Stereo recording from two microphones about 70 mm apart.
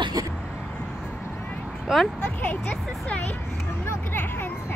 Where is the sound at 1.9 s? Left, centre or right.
Centre.